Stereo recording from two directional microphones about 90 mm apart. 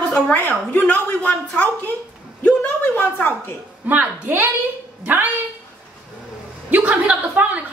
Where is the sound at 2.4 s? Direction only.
20° left (ahead or behind).